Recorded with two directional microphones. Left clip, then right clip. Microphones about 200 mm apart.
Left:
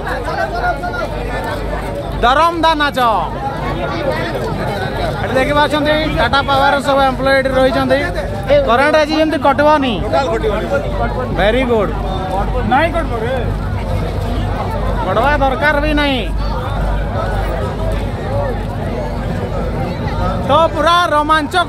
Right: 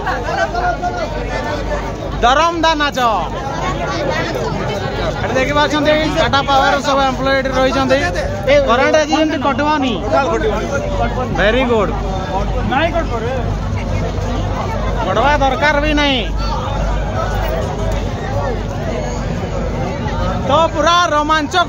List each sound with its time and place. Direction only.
2.2 s speech: 10° left (ahead or behind)
5.3 s speech: 10° left (ahead or behind)
8.6 s speech: 20° left (ahead or behind)
11.3 s speech: 5° left (ahead or behind)
15.0 s speech: 5° left (ahead or behind)
20.4 s speech: 10° left (ahead or behind)